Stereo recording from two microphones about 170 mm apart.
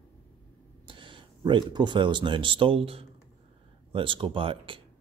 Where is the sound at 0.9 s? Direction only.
30° right (ahead or behind).